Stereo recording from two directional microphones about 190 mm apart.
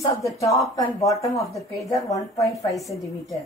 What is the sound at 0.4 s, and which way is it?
Speech, 15° left (ahead or behind).